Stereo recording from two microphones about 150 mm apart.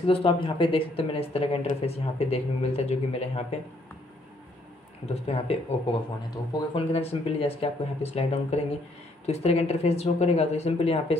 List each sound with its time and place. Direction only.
0.0 s speech: 35° left (ahead or behind)
5.0 s speech: 40° left (ahead or behind)